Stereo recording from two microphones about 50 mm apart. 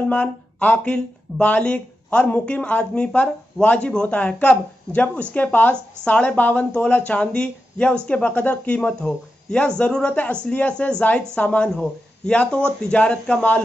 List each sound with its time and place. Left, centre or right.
0.0 s speech: left
11.7 s a man's voice: centre